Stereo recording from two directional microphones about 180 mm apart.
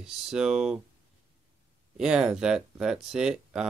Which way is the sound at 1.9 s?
5° right (ahead or behind).